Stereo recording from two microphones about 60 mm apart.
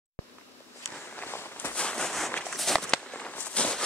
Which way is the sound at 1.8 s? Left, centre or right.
Centre.